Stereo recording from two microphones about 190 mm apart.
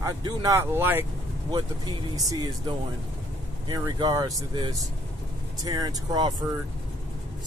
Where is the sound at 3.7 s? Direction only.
20° right (ahead or behind).